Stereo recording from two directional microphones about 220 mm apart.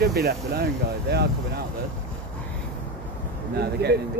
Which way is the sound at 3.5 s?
45° right (ahead or behind).